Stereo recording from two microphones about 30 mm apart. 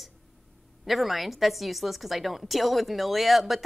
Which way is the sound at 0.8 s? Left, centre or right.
Centre.